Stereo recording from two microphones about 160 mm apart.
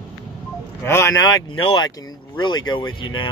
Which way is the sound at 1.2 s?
30° left (ahead or behind).